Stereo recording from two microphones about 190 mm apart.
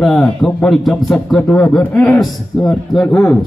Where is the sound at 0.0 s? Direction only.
Centre (ahead or behind).